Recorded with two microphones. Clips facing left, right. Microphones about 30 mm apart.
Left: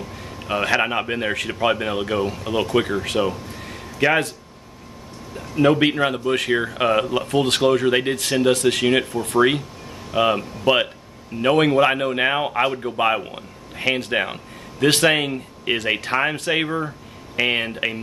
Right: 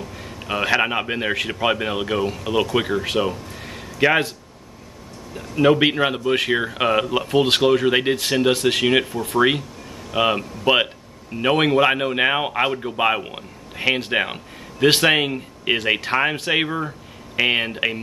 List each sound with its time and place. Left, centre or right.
0.4 s a man's voice: centre
5.6 s a man's voice: centre
16.6 s a man's voice: centre